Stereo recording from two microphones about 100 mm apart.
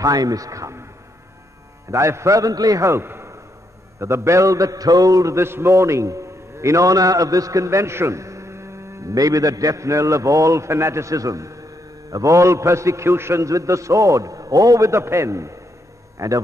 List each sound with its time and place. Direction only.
0.0 s a man's voice: 40° right (ahead or behind)
1.9 s a man's voice: 30° right (ahead or behind)